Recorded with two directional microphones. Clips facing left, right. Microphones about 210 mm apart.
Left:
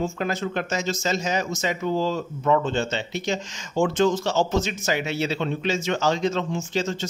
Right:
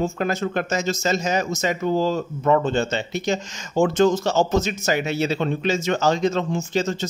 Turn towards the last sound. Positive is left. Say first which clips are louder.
# right 3 dB
turn(degrees=-40)  # may be behind; listen again after turning